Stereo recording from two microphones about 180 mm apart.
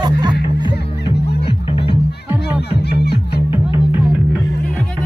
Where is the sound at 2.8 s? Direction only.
70° left (ahead or behind).